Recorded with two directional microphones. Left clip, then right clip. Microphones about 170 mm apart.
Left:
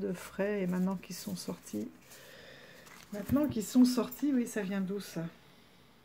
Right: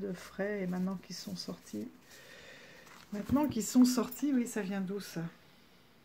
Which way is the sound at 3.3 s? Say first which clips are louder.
Even; 15° right (ahead or behind).